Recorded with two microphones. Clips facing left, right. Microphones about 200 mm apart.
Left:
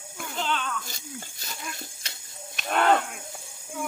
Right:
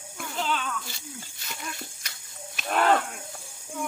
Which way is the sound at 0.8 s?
45° left (ahead or behind).